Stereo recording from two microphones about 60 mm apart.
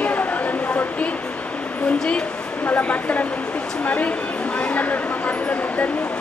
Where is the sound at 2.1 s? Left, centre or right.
Left.